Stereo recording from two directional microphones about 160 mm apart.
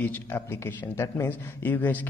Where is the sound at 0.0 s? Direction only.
10° left (ahead or behind).